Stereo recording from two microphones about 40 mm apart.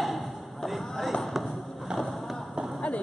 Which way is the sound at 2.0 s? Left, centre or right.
Centre.